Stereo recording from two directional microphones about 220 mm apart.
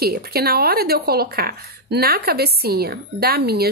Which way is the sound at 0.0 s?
45° right (ahead or behind).